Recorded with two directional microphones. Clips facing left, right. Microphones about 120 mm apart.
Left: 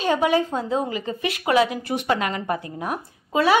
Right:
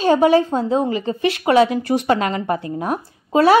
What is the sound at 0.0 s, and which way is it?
A woman's voice, 35° right (ahead or behind).